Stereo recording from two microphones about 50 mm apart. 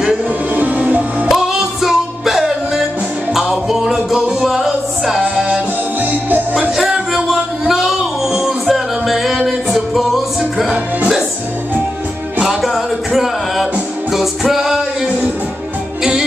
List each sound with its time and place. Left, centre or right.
0.6 s music: right
1.3 s music: centre
7.2 s a sound: centre
12.4 s music: centre
16.0 s music: centre